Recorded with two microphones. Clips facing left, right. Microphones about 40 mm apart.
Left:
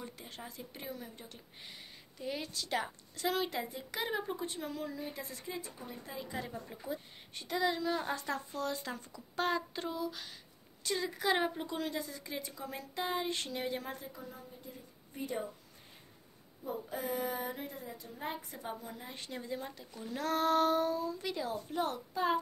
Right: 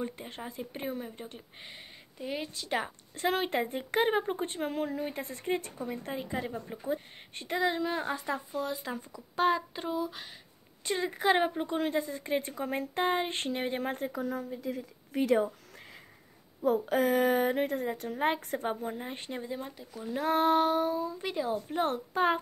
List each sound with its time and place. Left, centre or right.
0.0 s speech: right
6.3 s speech: right
8.0 s speech: centre
11.6 s a woman's voice: right
16.6 s a woman's voice: right
19.6 s speech: centre
21.7 s speech: right